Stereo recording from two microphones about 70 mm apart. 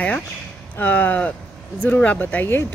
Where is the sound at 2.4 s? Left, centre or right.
Left.